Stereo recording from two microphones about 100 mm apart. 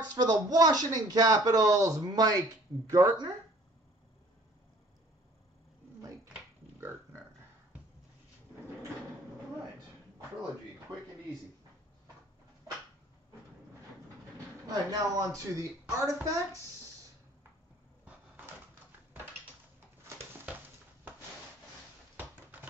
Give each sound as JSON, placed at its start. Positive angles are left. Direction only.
{"t": 0.1, "sound": "speech", "side_deg": -40}
{"t": 14.7, "sound": "speech", "side_deg": -40}
{"t": 18.0, "sound": "cupboard open or close", "side_deg": -20}